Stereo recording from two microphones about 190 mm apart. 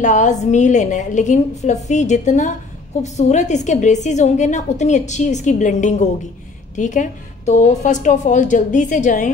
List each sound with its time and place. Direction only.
0.0 s a woman's voice: 40° left (ahead or behind)